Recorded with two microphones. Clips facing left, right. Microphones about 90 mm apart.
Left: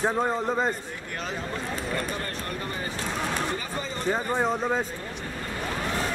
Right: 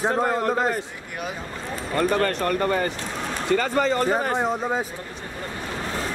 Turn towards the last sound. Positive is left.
turn(degrees=-5)  # may be behind; listen again after turning